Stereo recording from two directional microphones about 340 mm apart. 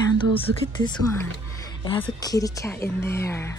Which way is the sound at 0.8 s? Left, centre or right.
Centre.